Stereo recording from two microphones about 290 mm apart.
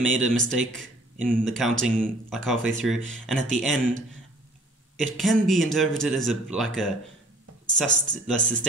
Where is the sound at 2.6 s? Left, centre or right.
Right.